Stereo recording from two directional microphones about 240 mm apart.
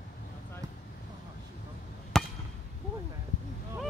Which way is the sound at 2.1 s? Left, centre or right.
Centre.